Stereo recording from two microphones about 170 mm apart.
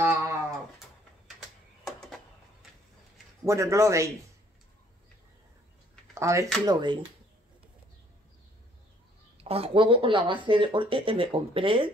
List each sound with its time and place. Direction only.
0.0 s a sound: 15° right (ahead or behind)
3.4 s speech: 15° right (ahead or behind)
6.1 s speech: 15° right (ahead or behind)
9.4 s speech: 35° right (ahead or behind)